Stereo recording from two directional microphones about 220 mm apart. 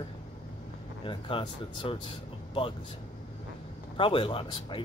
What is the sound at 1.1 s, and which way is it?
Speech, 25° left (ahead or behind).